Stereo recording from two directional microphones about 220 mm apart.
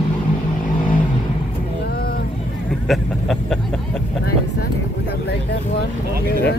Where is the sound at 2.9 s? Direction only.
Centre (ahead or behind).